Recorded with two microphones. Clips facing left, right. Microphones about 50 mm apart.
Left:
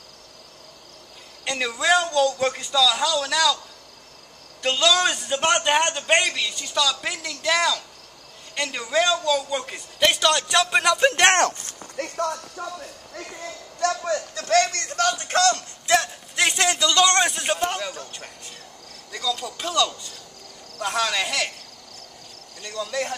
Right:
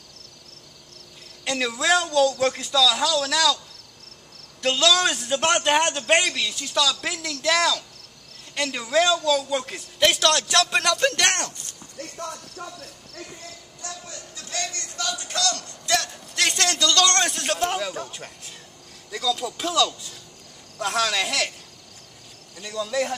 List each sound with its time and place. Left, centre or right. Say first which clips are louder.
1.4 s a man's voice: even; centre
4.6 s a man's voice: even; centre
11.8 s speech: left 8 dB; left
12.6 s speech: left 5 dB; left
13.7 s a man's voice: left 16 dB; left
16.1 s a man's voice: left 2 dB; centre
22.6 s a man's voice: right 2 dB; centre